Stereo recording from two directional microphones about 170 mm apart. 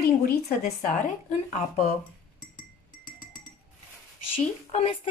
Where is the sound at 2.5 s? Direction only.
55° left (ahead or behind).